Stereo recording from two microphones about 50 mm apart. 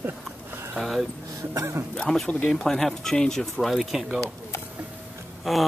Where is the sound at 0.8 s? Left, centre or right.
Centre.